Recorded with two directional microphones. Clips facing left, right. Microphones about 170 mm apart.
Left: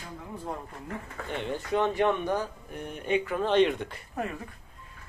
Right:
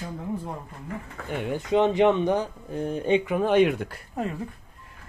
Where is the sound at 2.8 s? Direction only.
30° right (ahead or behind).